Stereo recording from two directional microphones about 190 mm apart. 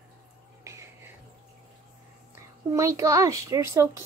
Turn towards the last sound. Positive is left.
turn(degrees=-15)  # may be behind; listen again after turning